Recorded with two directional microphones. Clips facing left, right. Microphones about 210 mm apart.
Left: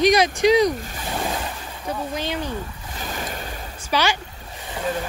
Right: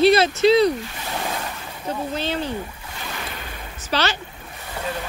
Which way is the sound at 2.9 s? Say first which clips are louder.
Left 3 dB; 45° left (ahead or behind).